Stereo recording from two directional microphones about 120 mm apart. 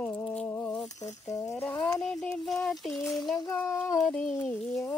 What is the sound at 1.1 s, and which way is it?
Speech, 25° left (ahead or behind).